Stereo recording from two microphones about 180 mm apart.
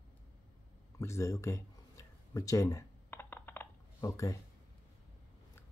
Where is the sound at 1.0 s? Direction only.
15° left (ahead or behind).